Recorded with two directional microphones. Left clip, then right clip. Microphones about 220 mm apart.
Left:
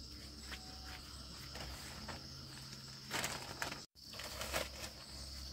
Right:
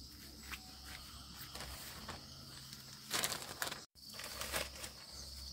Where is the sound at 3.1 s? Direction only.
30° right (ahead or behind).